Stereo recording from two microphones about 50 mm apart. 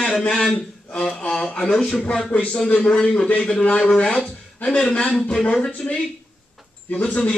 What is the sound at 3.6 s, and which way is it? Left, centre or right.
Speech, left.